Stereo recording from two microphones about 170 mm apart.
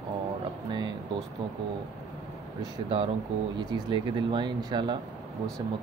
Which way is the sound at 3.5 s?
25° right (ahead or behind).